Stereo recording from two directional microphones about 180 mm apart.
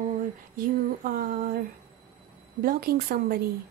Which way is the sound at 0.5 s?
50° right (ahead or behind).